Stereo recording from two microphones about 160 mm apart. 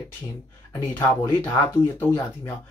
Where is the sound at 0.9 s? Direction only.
15° left (ahead or behind).